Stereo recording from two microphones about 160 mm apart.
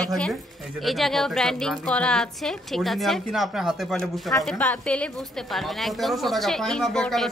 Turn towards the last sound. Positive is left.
turn(degrees=5)  # may be behind; listen again after turning